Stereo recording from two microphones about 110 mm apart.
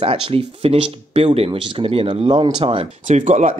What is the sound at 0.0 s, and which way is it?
Speech, 60° right (ahead or behind).